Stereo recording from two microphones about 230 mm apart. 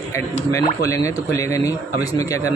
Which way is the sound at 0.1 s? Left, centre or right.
Centre.